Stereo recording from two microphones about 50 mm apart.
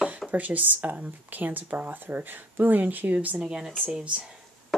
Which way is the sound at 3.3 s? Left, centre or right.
Centre.